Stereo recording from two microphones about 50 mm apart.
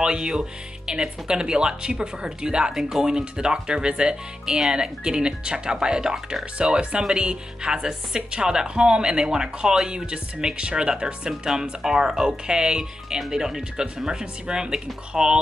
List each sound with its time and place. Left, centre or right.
0.0 s speech: centre